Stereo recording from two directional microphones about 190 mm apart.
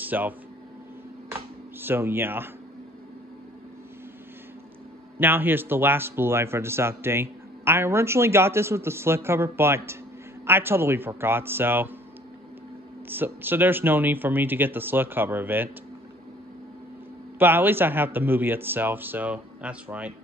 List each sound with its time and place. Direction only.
0.0 s speech: 10° right (ahead or behind)
1.3 s a sound: 10° right (ahead or behind)
5.2 s speech: 10° right (ahead or behind)
13.1 s speech: 10° right (ahead or behind)
17.4 s speech: 10° right (ahead or behind)